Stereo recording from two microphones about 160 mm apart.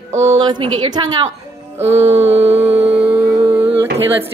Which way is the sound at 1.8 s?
40° right (ahead or behind).